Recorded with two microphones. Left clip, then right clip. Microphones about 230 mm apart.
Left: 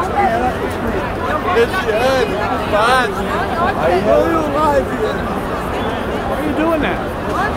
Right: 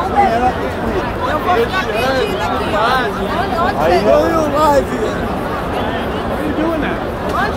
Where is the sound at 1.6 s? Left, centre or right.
Left.